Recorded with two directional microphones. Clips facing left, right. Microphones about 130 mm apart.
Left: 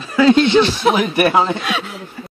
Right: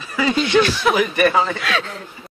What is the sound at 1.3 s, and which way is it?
Speech, 60° left (ahead or behind).